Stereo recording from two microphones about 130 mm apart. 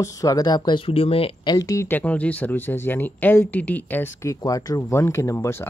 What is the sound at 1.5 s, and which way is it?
Speech, 25° left (ahead or behind).